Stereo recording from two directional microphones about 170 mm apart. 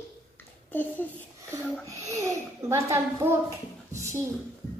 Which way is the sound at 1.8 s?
20° right (ahead or behind).